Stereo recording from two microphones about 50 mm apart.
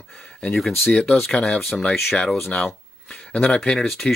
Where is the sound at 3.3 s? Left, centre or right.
Left.